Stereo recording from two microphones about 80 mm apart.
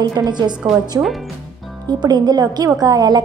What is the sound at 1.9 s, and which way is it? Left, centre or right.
A woman's voice, right.